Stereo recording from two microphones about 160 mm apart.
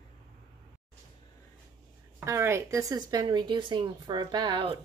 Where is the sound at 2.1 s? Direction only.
15° right (ahead or behind).